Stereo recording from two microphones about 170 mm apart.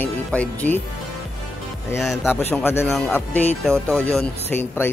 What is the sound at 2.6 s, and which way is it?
Speech, 15° left (ahead or behind).